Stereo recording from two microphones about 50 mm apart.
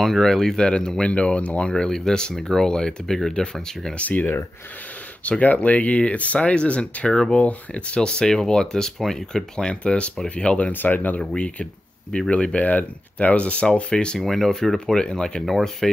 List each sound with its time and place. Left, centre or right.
0.0 s speech: centre
4.0 s speech: left
5.4 s speech: left
10.7 s speech: left
11.1 s speech: left
14.2 s speech: centre
15.8 s speech: centre